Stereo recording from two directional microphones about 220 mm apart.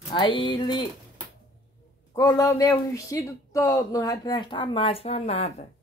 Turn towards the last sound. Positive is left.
turn(degrees=25)  # may be behind; listen again after turning